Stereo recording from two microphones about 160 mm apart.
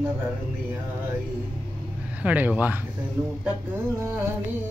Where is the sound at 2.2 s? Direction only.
10° right (ahead or behind).